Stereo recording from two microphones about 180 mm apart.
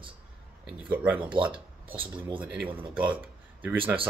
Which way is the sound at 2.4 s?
5° right (ahead or behind).